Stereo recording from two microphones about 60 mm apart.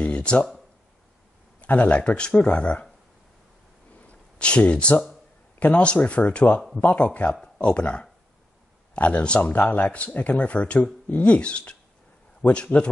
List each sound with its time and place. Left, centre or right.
0.0 s a sound: centre
1.6 s speech: left
4.1 s speech: centre
9.5 s speech: left